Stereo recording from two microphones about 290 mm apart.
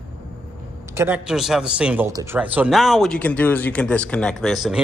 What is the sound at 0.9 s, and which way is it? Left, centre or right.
Speech, centre.